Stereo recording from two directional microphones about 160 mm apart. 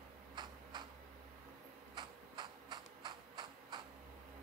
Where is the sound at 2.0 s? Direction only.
30° right (ahead or behind).